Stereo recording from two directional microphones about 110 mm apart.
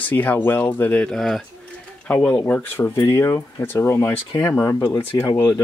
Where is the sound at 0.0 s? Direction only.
15° left (ahead or behind).